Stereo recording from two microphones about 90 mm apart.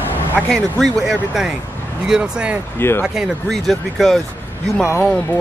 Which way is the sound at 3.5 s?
Centre (ahead or behind).